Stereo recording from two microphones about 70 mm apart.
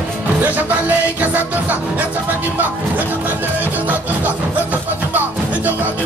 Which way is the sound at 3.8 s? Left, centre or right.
Right.